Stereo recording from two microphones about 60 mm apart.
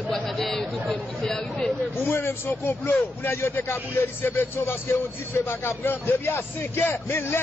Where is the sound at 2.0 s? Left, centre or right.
Left.